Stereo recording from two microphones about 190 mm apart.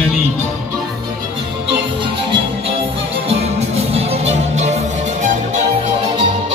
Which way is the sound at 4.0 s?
35° right (ahead or behind).